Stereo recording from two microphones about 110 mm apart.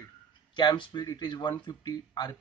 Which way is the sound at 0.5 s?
45° left (ahead or behind).